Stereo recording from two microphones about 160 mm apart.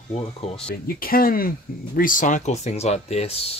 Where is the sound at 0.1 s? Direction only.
40° left (ahead or behind).